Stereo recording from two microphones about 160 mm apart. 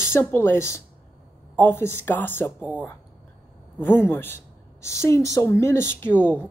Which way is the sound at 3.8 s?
15° left (ahead or behind).